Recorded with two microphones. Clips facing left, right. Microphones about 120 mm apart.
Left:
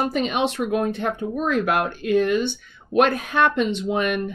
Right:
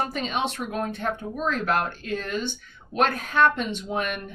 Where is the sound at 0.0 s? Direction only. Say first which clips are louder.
Left 5 dB; 15° left (ahead or behind).